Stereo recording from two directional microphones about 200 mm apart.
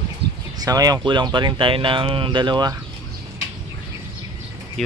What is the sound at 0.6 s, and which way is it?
Speech, 20° right (ahead or behind).